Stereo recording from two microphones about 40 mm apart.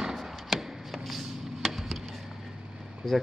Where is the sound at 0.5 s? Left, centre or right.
Centre.